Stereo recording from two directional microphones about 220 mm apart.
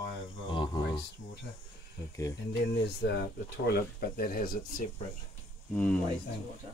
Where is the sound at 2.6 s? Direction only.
50° left (ahead or behind).